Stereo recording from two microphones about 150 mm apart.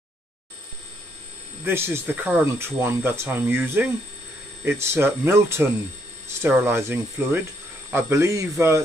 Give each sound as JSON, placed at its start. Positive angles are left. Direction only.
{"t": 1.6, "sound": "speech", "side_deg": -15}